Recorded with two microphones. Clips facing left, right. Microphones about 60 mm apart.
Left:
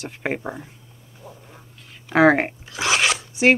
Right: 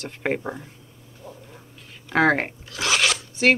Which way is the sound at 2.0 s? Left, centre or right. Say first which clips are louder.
Left 4 dB; centre.